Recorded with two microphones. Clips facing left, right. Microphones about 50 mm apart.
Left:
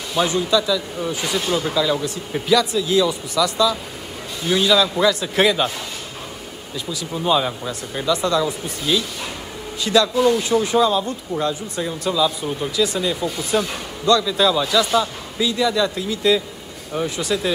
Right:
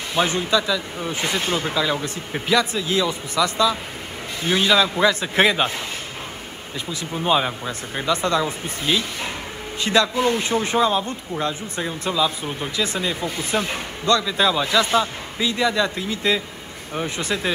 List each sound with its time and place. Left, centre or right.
0.1 s speech: right
0.6 s a man's voice: right
1.1 s a man's voice: right
6.9 s speech: right
7.3 s a man's voice: centre
8.1 s speech: right